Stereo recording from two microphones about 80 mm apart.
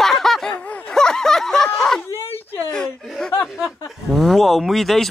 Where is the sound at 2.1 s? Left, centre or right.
Left.